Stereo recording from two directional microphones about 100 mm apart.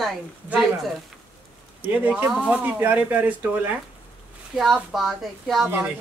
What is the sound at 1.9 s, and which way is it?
Speech, 20° right (ahead or behind).